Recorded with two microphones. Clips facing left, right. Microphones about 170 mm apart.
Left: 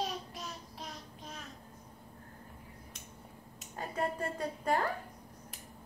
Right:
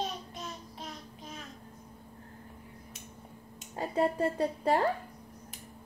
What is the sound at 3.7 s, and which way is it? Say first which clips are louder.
Speech: right 6 dB; 30° right (ahead or behind).